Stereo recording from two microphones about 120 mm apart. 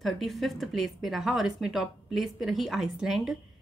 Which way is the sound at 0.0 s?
Centre (ahead or behind).